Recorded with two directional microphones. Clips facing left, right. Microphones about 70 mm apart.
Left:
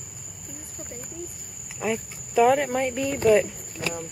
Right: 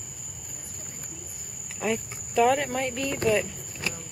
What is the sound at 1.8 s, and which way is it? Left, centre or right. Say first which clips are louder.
Speech: left 1 dB; centre.